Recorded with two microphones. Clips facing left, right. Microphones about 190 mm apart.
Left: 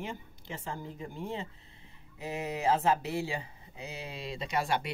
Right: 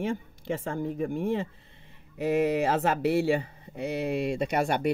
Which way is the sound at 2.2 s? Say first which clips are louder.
Right 11 dB; 70° right (ahead or behind).